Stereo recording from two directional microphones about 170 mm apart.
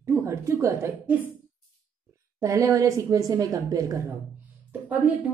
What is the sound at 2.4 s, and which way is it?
A woman's voice, 20° right (ahead or behind).